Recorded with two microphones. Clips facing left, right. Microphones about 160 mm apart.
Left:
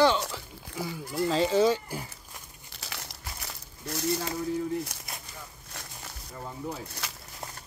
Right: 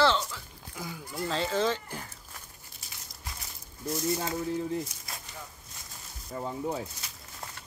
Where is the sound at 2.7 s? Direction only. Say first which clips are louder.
Left 11 dB; 80° left.